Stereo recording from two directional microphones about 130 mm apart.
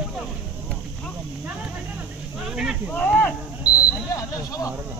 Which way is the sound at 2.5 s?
5° right (ahead or behind).